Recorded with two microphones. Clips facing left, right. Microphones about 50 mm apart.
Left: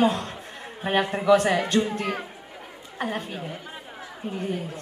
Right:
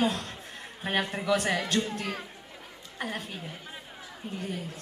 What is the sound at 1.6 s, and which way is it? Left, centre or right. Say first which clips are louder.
A woman's voice: left 6 dB; centre.